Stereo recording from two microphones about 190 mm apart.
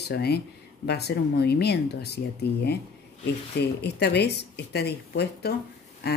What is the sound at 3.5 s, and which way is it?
A woman's voice, 60° left (ahead or behind).